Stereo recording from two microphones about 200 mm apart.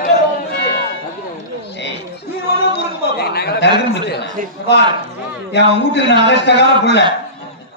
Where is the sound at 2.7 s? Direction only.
55° left (ahead or behind).